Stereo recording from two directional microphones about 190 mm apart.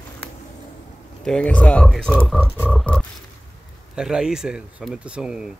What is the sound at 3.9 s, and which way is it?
Speech, 5° right (ahead or behind).